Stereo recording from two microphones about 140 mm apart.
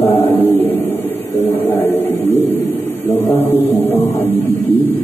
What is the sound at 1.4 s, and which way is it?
Music, 15° left (ahead or behind).